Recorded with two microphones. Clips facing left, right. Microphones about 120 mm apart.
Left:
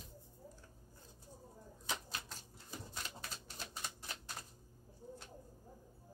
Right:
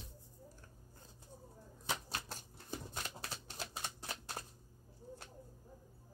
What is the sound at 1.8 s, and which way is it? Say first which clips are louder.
Typewriter: right 3 dB; 45° right (ahead or behind).